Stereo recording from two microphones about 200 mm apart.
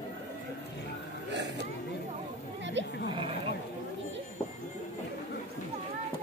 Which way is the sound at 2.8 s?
65° right (ahead or behind).